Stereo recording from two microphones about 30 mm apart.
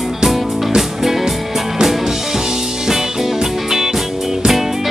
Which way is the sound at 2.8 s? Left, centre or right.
Centre.